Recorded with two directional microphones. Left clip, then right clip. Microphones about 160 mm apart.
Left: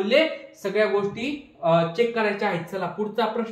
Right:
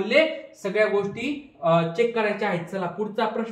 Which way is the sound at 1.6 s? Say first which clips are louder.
Even; 10° left (ahead or behind).